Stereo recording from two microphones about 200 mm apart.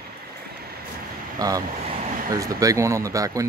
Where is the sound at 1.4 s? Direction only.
20° right (ahead or behind).